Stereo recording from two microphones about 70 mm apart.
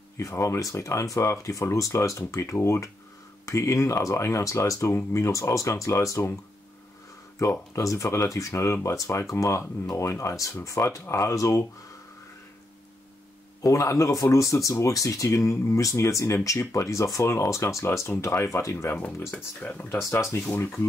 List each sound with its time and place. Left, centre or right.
0.2 s speech: left
7.3 s speech: left
13.6 s speech: left
18.9 s speech: left
20.1 s speech: left